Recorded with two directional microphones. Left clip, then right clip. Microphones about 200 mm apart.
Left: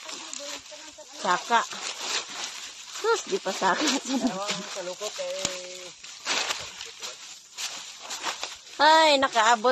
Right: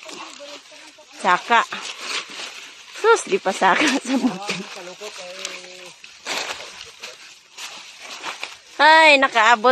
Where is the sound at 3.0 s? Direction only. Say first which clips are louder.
Right 9 dB; 35° right (ahead or behind).